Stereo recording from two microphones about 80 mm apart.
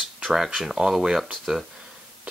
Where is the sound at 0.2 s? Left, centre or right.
Centre.